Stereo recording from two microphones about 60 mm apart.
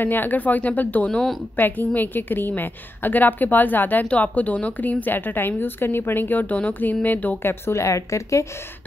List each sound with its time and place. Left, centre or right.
0.0 s a woman's voice: left
1.6 s a woman's voice: left
7.4 s a woman's voice: left